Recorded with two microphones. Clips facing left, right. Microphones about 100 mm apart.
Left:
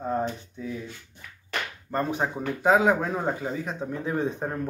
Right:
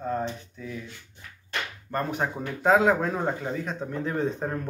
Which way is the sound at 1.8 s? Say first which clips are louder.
Left 1 dB; 5° left (ahead or behind).